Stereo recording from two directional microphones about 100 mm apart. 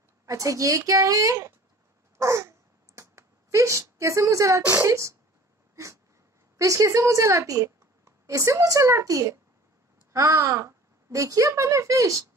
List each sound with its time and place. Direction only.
0.3 s speech: 35° right (ahead or behind)
2.1 s a sound: 30° right (ahead or behind)
3.0 s speech: 30° right (ahead or behind)
6.6 s a woman's voice: 30° right (ahead or behind)